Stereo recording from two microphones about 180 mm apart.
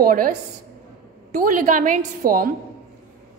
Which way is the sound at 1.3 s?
50° right (ahead or behind).